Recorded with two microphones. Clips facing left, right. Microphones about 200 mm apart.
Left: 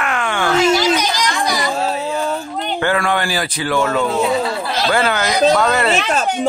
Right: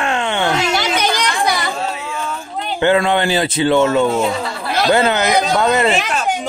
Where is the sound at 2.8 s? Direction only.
20° right (ahead or behind).